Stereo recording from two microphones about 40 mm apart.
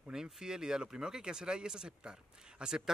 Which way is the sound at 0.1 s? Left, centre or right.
Centre.